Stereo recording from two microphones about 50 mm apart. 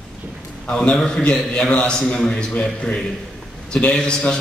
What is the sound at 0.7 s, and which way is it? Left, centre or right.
A man's voice, left.